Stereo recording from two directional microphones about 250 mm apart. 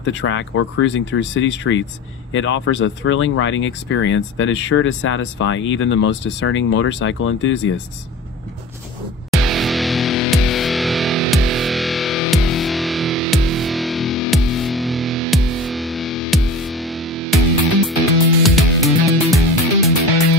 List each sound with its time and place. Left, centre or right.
0.1 s speech: left
9.3 s music: centre
18.4 s music: centre